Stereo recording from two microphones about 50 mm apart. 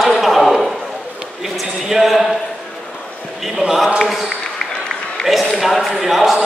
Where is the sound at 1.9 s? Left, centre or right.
Centre.